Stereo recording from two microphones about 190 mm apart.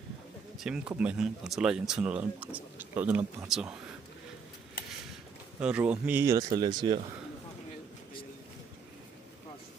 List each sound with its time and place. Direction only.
0.6 s speech: 5° right (ahead or behind)
5.6 s speech: 5° right (ahead or behind); by 7.0 s 25° right (ahead or behind)